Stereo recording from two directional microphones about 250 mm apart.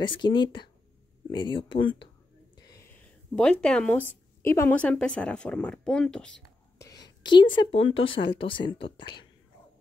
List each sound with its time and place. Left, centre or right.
0.0 s speech: centre
2.5 s whispering: centre
3.3 s speech: centre
6.9 s speech: centre